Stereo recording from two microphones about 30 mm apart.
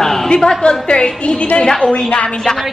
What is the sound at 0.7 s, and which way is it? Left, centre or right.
A woman's voice, left.